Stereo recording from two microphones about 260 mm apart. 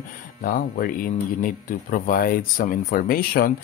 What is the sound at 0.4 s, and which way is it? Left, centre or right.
Speech, left.